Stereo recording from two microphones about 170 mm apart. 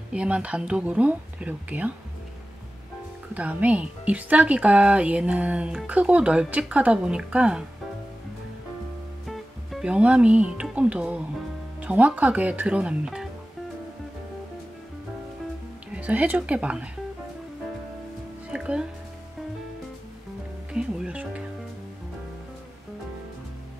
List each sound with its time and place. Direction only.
0.1 s speech: 5° right (ahead or behind)
3.3 s speech: 10° right (ahead or behind)
9.2 s speech: centre (ahead or behind)
15.9 s speech: 10° right (ahead or behind)
18.5 s speech: 5° right (ahead or behind)
20.7 s music: 5° right (ahead or behind)